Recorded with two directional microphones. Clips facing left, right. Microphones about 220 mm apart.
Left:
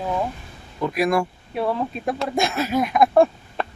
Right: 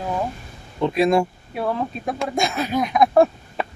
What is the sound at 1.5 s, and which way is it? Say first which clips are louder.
Speech: left 1 dB; centre (ahead or behind).